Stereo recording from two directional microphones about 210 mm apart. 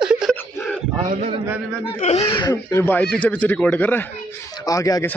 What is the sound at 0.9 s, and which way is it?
Mantra, 25° right (ahead or behind).